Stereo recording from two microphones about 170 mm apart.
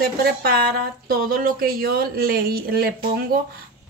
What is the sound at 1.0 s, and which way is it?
A woman's voice, 55° right (ahead or behind).